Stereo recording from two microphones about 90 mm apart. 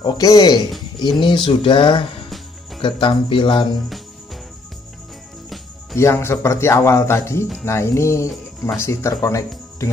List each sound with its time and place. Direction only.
0.0 s speech: 45° left (ahead or behind)
1.2 s a sound: 70° left (ahead or behind)
2.2 s music: centre (ahead or behind)
2.8 s a sound: 75° left (ahead or behind)
5.9 s speech: 30° left (ahead or behind)
9.8 s music: 35° left (ahead or behind)